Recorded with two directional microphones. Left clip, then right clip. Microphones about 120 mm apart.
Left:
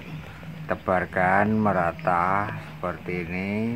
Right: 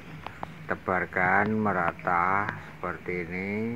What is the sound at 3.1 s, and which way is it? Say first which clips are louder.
Speech: left 2 dB; 15° left (ahead or behind).